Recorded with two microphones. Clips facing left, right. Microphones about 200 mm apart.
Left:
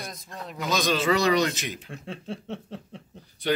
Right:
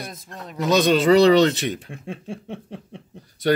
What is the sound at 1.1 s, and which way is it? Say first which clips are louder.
Speech: right 9 dB; 35° right (ahead or behind).